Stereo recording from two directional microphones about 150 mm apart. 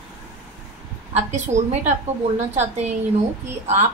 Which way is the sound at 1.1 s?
50° right (ahead or behind).